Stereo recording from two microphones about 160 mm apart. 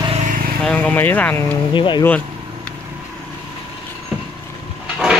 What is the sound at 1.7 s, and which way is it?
Speech, 30° left (ahead or behind).